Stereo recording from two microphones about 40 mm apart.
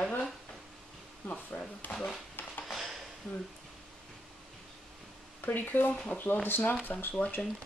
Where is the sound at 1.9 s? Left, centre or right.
Left.